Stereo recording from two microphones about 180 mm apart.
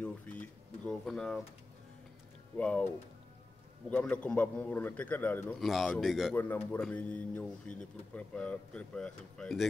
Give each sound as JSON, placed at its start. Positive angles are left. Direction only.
{"t": 0.0, "sound": "a sound", "side_deg": 10}
{"t": 2.5, "sound": "speech", "side_deg": 5}
{"t": 3.9, "sound": "speech", "side_deg": 5}
{"t": 6.3, "sound": "speech", "side_deg": 10}